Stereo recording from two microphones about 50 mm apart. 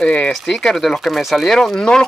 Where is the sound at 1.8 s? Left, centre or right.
Centre.